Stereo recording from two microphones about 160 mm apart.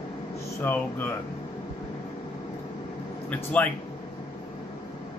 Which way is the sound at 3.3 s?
10° left (ahead or behind).